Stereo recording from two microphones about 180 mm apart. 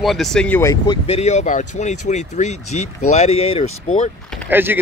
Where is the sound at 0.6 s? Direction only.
15° left (ahead or behind).